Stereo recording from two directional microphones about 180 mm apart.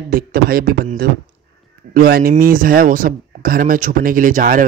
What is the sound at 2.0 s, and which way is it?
Speech, 55° right (ahead or behind).